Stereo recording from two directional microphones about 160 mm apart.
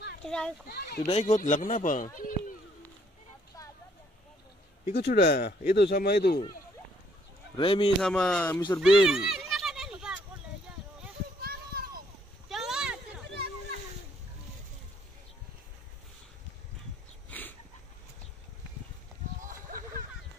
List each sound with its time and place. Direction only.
0.2 s a child's voice: 5° left (ahead or behind)
0.7 s speech: 80° left
1.1 s speech: 45° left (ahead or behind)
4.9 s speech: 85° left
7.5 s speech: 35° left (ahead or behind)
8.0 s speech: 5° left (ahead or behind)
8.5 s speech: 20° left (ahead or behind)
9.0 s a sound: 5° right (ahead or behind)
11.4 s children playing: 70° right (ahead or behind)
12.4 s a sound: centre (ahead or behind)
13.3 s a sound: 90° right
17.3 s dog: 10° left (ahead or behind)